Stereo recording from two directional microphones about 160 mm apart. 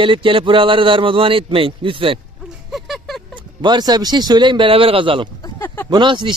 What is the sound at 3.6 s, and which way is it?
Speech, 25° right (ahead or behind).